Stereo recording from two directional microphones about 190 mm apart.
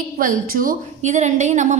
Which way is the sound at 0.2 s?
50° right (ahead or behind).